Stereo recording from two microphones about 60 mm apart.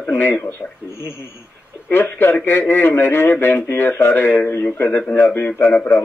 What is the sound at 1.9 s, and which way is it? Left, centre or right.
A man's voice, left.